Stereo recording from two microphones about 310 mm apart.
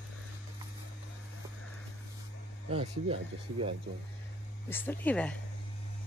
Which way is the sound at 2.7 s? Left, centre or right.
Centre.